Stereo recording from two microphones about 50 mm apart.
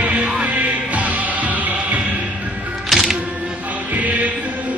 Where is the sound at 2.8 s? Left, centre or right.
Centre.